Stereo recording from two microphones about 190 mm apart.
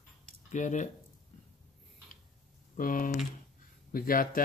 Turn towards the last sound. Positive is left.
turn(degrees=50)  # may be behind; listen again after turning